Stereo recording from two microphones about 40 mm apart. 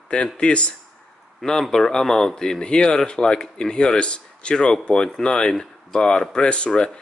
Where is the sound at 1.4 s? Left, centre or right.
Centre.